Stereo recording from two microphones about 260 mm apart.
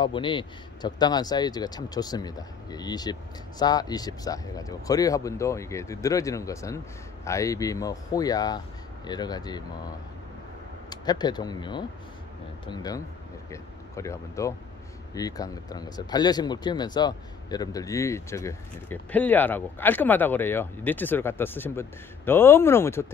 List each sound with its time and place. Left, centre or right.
0.0 s speech: centre